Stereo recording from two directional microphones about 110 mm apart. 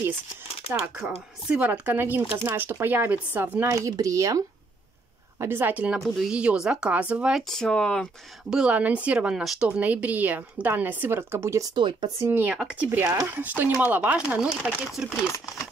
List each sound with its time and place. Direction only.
1.5 s speech: 15° right (ahead or behind)
3.6 s speech: 30° right (ahead or behind)
5.4 s speech: 20° right (ahead or behind)
5.9 s speech: centre (ahead or behind)
8.5 s speech: 10° right (ahead or behind); by 11.6 s 25° right (ahead or behind)
11.7 s speech: 45° right (ahead or behind)
12.2 s speech: 20° right (ahead or behind)
13.0 s speech: 25° right (ahead or behind)
13.3 s speech: 15° right (ahead or behind)